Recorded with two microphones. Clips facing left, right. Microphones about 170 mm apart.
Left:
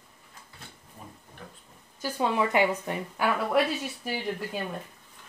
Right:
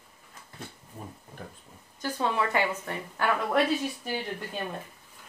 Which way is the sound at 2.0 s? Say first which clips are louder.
Left 2 dB; 15° left (ahead or behind).